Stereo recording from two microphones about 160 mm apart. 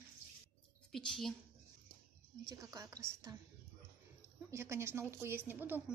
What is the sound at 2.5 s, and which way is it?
Speech, 20° right (ahead or behind).